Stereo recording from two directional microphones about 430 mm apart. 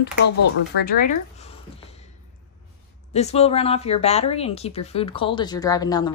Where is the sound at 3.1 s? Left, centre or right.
Centre.